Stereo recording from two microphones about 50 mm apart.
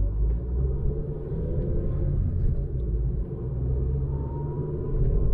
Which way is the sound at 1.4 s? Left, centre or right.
Left.